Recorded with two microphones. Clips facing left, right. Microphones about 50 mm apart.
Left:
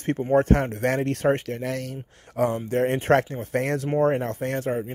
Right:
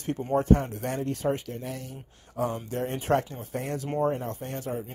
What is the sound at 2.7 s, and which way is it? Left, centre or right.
Speech, left.